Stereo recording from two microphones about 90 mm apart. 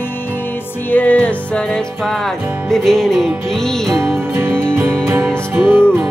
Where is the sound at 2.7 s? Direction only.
5° left (ahead or behind).